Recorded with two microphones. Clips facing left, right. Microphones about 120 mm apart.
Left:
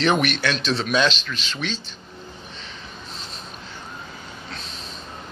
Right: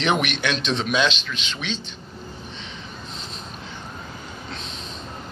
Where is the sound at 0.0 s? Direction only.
15° right (ahead or behind).